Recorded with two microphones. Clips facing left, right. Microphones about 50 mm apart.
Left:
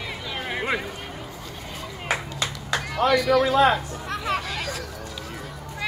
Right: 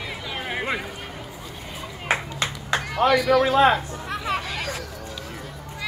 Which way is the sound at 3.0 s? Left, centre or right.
Centre.